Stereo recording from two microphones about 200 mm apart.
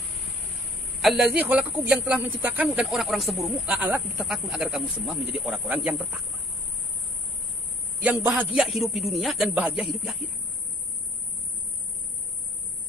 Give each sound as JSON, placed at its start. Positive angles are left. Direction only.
{"t": 1.0, "sound": "speech", "side_deg": -5}
{"t": 8.0, "sound": "speech", "side_deg": -5}